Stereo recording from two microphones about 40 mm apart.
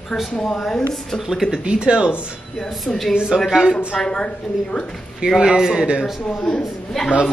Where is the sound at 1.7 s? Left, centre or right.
Right.